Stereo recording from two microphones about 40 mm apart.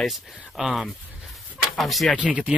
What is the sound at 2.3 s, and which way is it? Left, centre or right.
Speech, centre.